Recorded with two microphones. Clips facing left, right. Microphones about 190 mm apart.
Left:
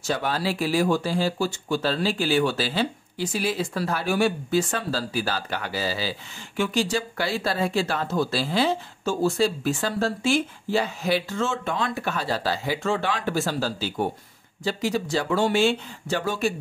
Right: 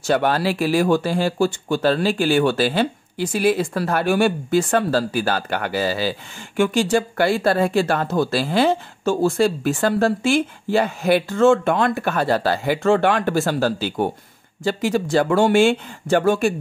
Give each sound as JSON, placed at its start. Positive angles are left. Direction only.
{"t": 0.0, "sound": "speech", "side_deg": -65}
{"t": 14.6, "sound": "speech", "side_deg": -55}